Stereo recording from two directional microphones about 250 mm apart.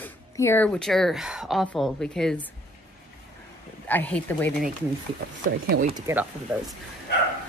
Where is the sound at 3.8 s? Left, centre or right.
Centre.